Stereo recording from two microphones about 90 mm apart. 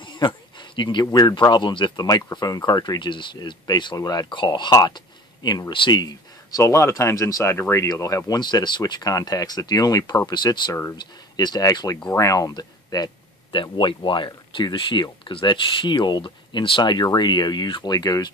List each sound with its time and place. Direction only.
0.0 s a sound: 60° left (ahead or behind)
1.5 s speech: 60° left (ahead or behind); by 4.3 s 45° left (ahead or behind)
4.3 s speech: 60° left (ahead or behind)
6.6 s speech: 35° left (ahead or behind)
8.4 s speech: 55° left (ahead or behind)